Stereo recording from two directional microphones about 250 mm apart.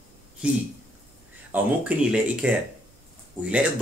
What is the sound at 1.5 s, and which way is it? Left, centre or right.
Speech, centre.